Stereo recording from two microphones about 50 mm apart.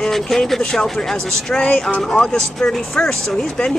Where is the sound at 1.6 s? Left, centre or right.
Left.